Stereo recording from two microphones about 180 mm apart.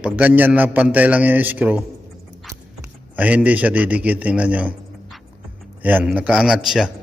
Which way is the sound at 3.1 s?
10° right (ahead or behind).